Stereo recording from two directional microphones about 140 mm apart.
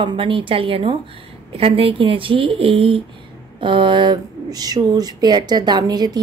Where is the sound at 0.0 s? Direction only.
35° right (ahead or behind).